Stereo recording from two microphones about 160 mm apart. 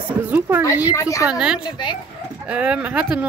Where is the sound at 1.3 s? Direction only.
5° right (ahead or behind).